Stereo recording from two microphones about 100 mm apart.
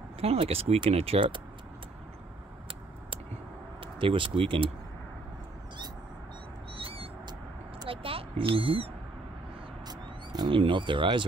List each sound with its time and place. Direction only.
0.2 s speech: 80° right
3.8 s speech: 60° right (ahead or behind)
6.7 s owl: 65° right (ahead or behind)
7.9 s a sound: 70° right (ahead or behind)
9.8 s vehicle: 45° right (ahead or behind)
10.5 s speech: 60° right (ahead or behind)